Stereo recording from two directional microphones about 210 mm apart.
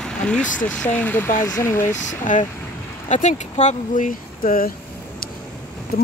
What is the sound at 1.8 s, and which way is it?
Speech, 35° left (ahead or behind).